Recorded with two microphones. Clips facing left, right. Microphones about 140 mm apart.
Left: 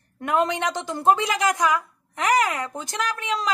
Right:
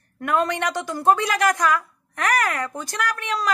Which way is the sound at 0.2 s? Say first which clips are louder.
Even; 20° left (ahead or behind).